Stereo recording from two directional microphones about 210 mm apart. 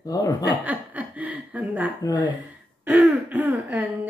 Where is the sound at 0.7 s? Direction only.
5° right (ahead or behind).